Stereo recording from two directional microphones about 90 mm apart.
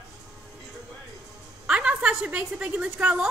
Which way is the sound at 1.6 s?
15° right (ahead or behind).